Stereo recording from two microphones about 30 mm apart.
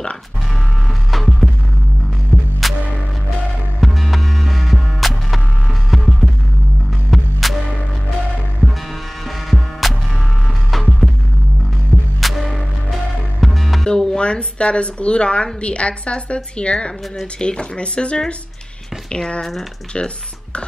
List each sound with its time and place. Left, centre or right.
1.1 s music: centre
2.6 s music: centre
3.8 s music: centre
9.5 s music: centre
12.2 s music: centre
13.8 s speech: left